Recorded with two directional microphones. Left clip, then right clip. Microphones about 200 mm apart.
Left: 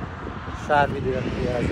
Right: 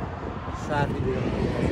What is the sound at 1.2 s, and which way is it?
Speech, 45° right (ahead or behind).